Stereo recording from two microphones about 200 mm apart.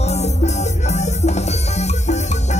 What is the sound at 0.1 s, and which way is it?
Music, 35° left (ahead or behind).